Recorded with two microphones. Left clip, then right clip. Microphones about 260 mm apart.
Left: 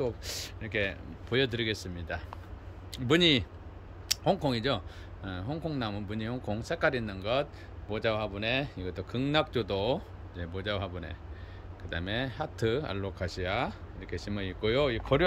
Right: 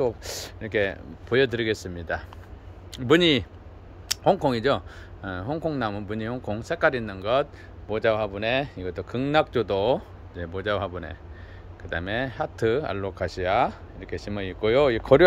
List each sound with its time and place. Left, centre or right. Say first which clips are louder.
0.0 s speech: right 7 dB; centre